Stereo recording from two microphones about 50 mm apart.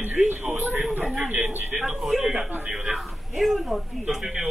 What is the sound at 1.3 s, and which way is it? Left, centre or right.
Speech, right.